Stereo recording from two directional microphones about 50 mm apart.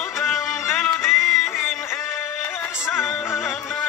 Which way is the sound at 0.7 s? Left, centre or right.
Centre.